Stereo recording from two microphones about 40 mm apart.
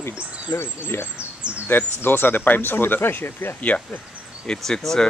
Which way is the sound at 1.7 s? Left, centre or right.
Left.